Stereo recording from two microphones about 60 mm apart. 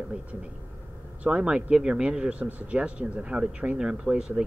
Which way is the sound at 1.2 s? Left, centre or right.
Centre.